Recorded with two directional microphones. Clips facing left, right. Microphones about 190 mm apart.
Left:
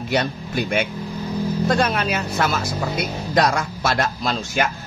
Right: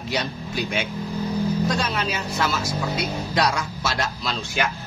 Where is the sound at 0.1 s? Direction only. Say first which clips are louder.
Left 5 dB; 55° left (ahead or behind).